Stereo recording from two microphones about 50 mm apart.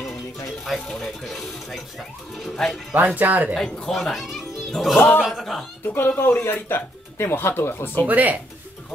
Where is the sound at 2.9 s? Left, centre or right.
Right.